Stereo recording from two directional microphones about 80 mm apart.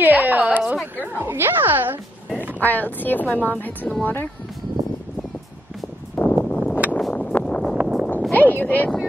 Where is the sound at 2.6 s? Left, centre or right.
Left.